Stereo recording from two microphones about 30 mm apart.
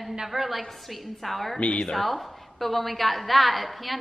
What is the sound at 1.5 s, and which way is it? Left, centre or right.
Speech, left.